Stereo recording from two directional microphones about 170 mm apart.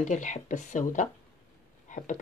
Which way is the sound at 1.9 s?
50° left (ahead or behind).